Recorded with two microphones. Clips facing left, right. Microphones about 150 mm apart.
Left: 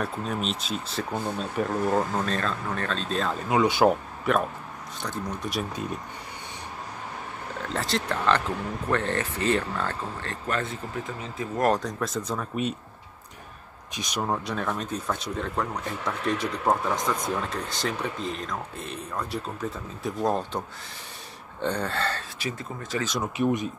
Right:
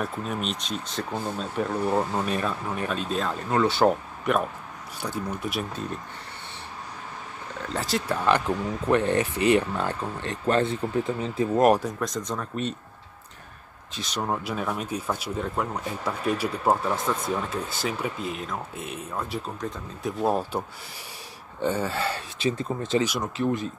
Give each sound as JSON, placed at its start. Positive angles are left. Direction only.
{"t": 0.0, "sound": "speech", "side_deg": 0}
{"t": 3.4, "sound": "speech", "side_deg": 15}
{"t": 7.6, "sound": "speech", "side_deg": 0}
{"t": 8.3, "sound": "speech", "side_deg": -15}
{"t": 10.4, "sound": "speech", "side_deg": -30}
{"t": 11.6, "sound": "speech", "side_deg": -10}
{"t": 12.0, "sound": "speech", "side_deg": 5}
{"t": 13.9, "sound": "speech", "side_deg": 15}
{"t": 14.2, "sound": "speech", "side_deg": -5}
{"t": 22.4, "sound": "speech", "side_deg": -25}
{"t": 23.3, "sound": "speech", "side_deg": 15}